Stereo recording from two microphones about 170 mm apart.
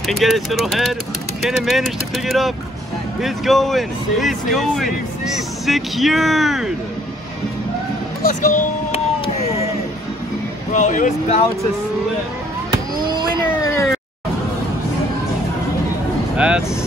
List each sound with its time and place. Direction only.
0.0 s speech: centre (ahead or behind)
8.3 s speech: 50° left (ahead or behind)
10.7 s speech: 45° left (ahead or behind)
12.9 s a sound: 25° right (ahead or behind)
13.3 s a sound: 15° left (ahead or behind)
16.3 s speech: 5° right (ahead or behind)